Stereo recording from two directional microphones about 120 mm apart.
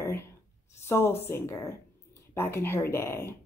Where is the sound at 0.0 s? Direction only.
20° left (ahead or behind).